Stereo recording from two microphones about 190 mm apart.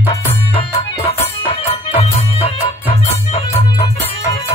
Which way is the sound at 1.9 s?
30° left (ahead or behind).